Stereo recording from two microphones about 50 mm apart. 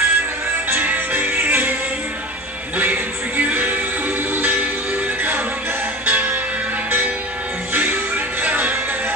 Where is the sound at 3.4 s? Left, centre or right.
Right.